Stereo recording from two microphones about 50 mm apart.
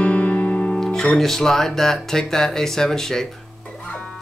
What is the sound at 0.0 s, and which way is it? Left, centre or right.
Music, left.